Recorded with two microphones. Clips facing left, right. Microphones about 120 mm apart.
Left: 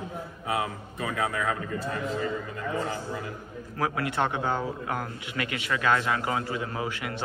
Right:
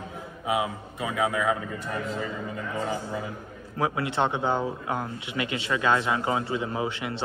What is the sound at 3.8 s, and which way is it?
Speech, 20° right (ahead or behind).